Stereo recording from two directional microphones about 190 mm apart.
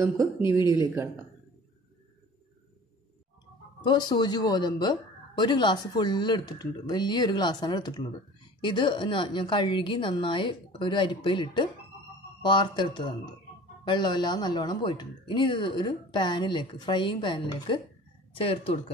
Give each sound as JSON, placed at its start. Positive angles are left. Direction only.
{"t": 0.6, "sound": "a woman's voice", "side_deg": 20}
{"t": 3.8, "sound": "a woman's voice", "side_deg": 25}